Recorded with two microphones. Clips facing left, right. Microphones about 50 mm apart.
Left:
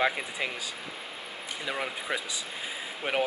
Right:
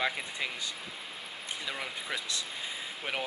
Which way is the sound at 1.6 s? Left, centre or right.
Centre.